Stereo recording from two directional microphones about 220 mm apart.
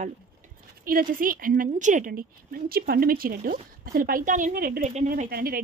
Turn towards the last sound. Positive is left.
turn(degrees=-40)  # may be behind; listen again after turning